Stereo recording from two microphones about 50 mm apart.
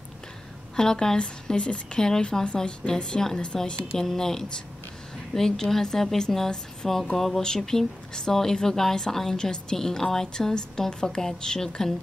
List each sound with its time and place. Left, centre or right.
0.7 s a woman's voice: centre